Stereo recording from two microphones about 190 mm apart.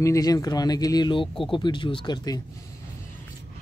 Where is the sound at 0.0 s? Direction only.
20° left (ahead or behind).